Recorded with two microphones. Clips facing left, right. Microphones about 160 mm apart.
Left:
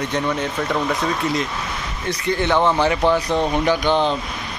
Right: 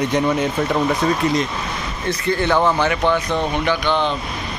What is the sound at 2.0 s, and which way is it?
Speech, 15° left (ahead or behind).